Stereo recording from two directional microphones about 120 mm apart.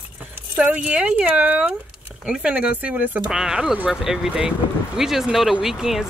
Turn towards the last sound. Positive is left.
turn(degrees=-5)  # may be behind; listen again after turning